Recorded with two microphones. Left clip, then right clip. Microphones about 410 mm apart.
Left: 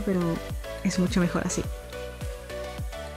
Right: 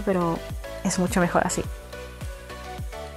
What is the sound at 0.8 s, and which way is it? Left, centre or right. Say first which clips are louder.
Speech: right 4 dB; centre.